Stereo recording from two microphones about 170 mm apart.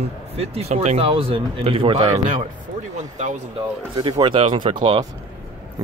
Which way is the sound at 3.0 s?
45° right (ahead or behind).